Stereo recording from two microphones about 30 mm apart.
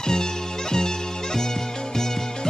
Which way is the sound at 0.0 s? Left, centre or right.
Left.